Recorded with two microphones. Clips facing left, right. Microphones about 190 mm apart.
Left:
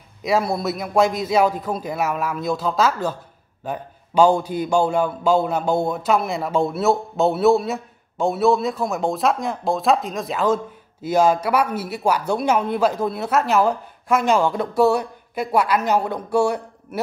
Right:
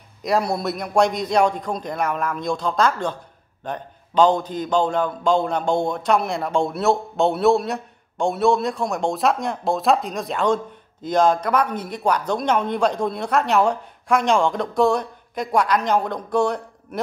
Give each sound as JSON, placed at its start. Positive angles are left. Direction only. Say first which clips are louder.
{"t": 0.2, "sound": "a man's voice", "louder": "left 1 dB", "side_deg": 0}